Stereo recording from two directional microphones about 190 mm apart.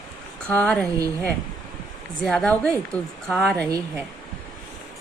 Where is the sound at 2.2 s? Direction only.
5° left (ahead or behind).